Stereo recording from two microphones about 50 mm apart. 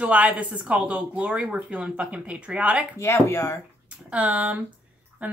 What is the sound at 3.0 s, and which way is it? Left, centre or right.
Speech, left.